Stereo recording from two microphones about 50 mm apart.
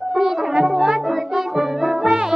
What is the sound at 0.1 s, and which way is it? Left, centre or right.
Music, centre.